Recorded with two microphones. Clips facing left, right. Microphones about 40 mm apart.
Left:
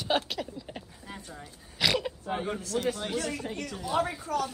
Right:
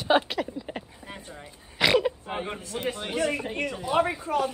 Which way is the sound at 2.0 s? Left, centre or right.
Right.